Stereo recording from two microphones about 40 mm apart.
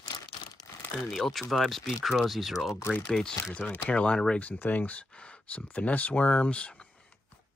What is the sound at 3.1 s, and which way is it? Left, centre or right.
Speech, centre.